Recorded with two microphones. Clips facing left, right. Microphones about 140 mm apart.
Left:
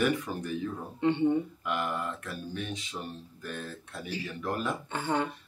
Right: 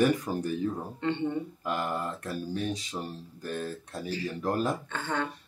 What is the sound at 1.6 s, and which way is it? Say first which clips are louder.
Speech: right 1 dB; 35° right (ahead or behind).